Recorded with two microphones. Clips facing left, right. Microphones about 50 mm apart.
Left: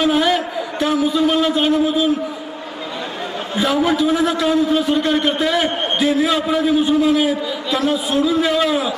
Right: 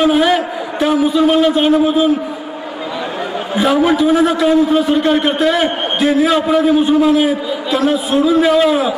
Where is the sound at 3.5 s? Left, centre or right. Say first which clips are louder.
Right 4 dB; centre.